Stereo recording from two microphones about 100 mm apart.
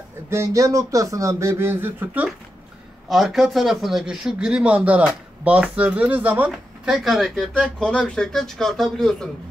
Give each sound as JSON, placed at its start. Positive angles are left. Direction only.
{"t": 0.3, "sound": "speech", "side_deg": -30}
{"t": 3.1, "sound": "a man's voice", "side_deg": 0}
{"t": 7.1, "sound": "speech", "side_deg": 0}